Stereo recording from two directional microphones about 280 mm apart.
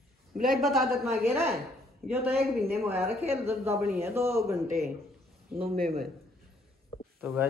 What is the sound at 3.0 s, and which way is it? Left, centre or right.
Speech, right.